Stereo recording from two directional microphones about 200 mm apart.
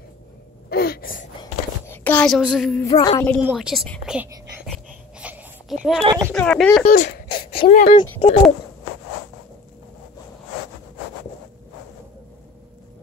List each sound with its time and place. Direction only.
0.7 s gasp: 50° left (ahead or behind)
1.4 s a sound: 10° left (ahead or behind)
2.9 s speech: 20° left (ahead or behind)
3.4 s speech: centre (ahead or behind)
5.2 s a sound: 5° right (ahead or behind)
6.3 s speech: 5° left (ahead or behind)
6.8 s speech: 40° left (ahead or behind)
7.2 s a sound: 25° left (ahead or behind)
7.7 s speech: 40° left (ahead or behind)
8.0 s speech: 30° left (ahead or behind)